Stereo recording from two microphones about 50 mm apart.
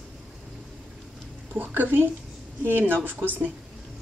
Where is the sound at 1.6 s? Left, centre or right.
Right.